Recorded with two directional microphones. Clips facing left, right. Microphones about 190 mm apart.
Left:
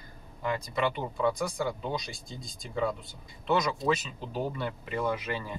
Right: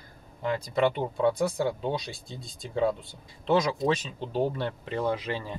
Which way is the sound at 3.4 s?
30° right (ahead or behind).